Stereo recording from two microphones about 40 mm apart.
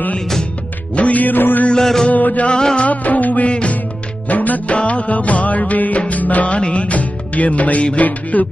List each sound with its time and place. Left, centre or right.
0.9 s music: left
1.8 s a sound: centre
2.0 s music: left
2.6 s music: left
2.9 s music: left
3.4 s music: left
4.3 s music: left